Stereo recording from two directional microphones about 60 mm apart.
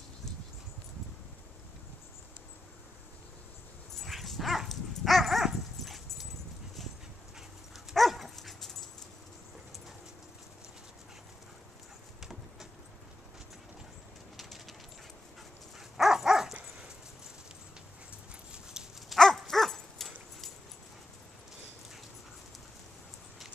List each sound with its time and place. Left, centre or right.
4.0 s dog: centre
7.3 s dog: centre
12.2 s a sound: centre
14.3 s pigeon: centre
16.0 s dog: centre
18.5 s dog: centre
19.1 s dog: centre